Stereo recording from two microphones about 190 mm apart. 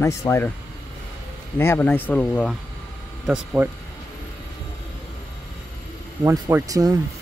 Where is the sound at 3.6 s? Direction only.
10° right (ahead or behind).